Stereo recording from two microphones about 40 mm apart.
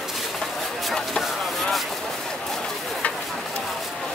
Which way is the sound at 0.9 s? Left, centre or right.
Centre.